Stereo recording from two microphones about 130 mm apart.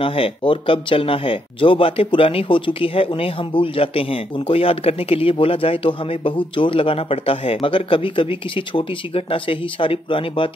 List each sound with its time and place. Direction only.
0.0 s speech: 45° left (ahead or behind)